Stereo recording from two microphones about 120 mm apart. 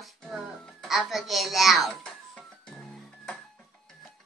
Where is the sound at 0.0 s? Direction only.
5° left (ahead or behind).